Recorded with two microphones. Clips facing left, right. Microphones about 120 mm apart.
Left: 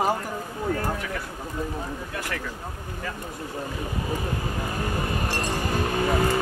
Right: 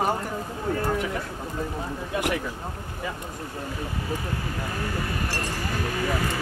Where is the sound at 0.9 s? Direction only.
20° right (ahead or behind).